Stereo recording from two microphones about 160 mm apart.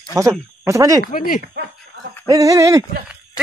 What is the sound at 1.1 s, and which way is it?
Speech, 55° left (ahead or behind).